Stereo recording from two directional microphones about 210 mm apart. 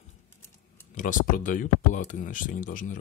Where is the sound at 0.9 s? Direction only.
40° left (ahead or behind).